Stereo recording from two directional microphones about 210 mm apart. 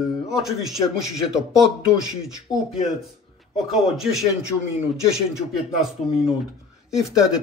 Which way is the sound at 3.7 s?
Centre (ahead or behind).